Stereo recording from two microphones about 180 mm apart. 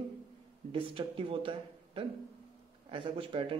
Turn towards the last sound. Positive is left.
turn(degrees=-30)  # may be behind; listen again after turning